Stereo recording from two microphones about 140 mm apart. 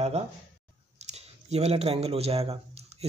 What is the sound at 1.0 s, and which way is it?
Speech, 50° right (ahead or behind).